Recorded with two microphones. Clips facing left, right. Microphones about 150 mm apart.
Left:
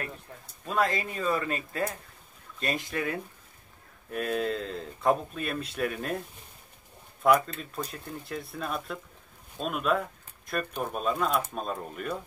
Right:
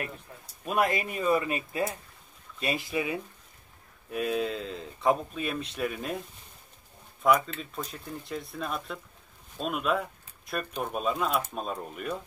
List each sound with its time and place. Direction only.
0.7 s speech: 20° right (ahead or behind); by 6.2 s 5° right (ahead or behind)
7.2 s speech: centre (ahead or behind)